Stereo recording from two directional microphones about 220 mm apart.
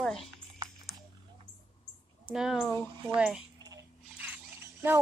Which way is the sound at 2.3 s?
Centre (ahead or behind).